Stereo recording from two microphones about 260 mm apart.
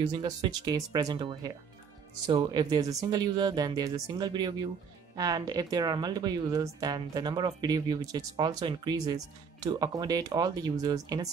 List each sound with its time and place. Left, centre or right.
0.0 s a woman's voice: centre